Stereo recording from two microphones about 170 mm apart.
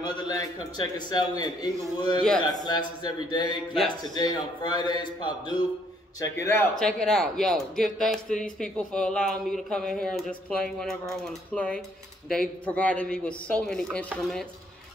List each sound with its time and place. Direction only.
0.0 s a man's voice: 20° left (ahead or behind)
6.8 s a man's voice: 5° left (ahead or behind)